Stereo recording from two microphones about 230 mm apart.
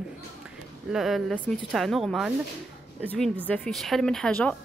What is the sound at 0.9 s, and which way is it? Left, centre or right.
A woman's voice, centre.